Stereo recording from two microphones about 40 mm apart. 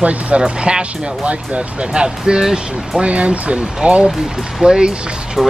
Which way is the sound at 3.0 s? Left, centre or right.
Right.